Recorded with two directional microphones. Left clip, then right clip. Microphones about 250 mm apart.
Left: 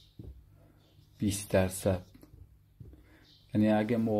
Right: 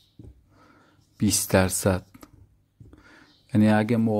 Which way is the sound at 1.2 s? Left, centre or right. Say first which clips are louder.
Right 7 dB; right.